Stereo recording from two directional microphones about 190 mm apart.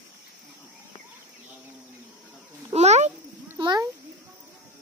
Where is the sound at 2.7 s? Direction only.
35° right (ahead or behind).